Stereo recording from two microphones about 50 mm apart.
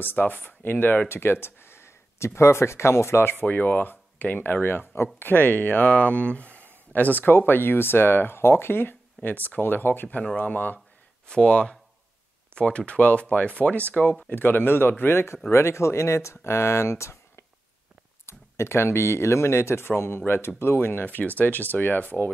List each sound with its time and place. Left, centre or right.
0.0 s speech: left
7.3 s speech: left
11.2 s speech: centre
14.3 s speech: left
15.5 s speech: left
20.0 s speech: left